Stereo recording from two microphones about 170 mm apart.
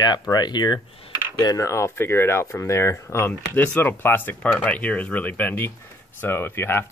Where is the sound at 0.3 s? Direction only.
25° left (ahead or behind).